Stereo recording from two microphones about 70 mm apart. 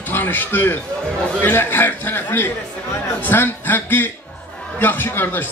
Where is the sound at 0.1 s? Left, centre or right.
Left.